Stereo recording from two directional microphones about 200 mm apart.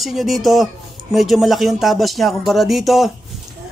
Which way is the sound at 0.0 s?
Centre (ahead or behind).